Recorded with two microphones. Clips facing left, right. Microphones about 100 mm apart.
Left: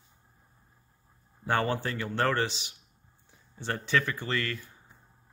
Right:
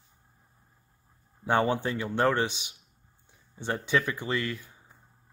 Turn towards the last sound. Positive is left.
turn(degrees=-15)  # may be behind; listen again after turning